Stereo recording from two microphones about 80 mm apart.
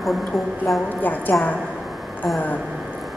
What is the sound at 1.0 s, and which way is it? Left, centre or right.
Speech, left.